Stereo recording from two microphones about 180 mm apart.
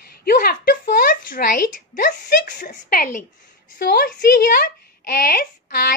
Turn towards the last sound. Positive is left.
turn(degrees=55)  # may be behind; listen again after turning